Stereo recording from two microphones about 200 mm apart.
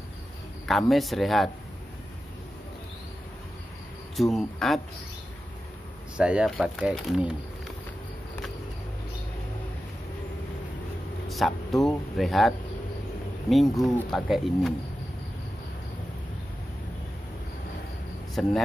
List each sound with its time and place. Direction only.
0.7 s speech: centre (ahead or behind)
4.2 s speech: centre (ahead or behind)
6.1 s speech: 5° right (ahead or behind)
11.2 s speech: centre (ahead or behind)
18.4 s speech: centre (ahead or behind)